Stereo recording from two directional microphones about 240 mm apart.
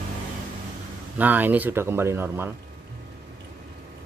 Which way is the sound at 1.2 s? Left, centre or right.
Centre.